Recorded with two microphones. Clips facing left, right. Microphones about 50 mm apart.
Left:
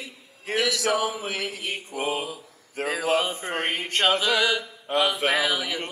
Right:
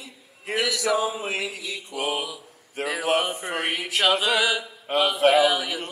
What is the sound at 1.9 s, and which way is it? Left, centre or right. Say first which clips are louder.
Mantra: right 1 dB; right.